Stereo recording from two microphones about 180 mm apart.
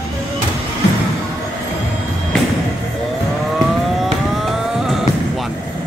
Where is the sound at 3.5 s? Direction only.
Centre (ahead or behind).